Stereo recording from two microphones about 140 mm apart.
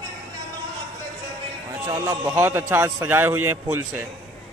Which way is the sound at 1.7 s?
25° right (ahead or behind).